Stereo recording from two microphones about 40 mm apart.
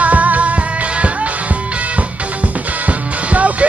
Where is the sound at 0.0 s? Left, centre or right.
Right.